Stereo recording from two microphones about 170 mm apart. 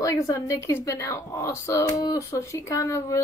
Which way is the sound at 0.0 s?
20° left (ahead or behind).